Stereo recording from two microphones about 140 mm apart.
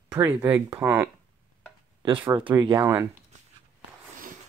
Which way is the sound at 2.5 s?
20° right (ahead or behind).